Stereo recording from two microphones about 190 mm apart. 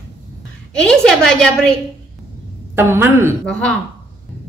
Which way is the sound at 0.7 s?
5° left (ahead or behind).